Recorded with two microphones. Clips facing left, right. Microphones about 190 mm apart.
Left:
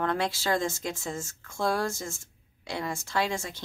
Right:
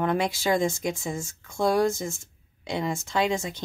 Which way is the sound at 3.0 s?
20° right (ahead or behind).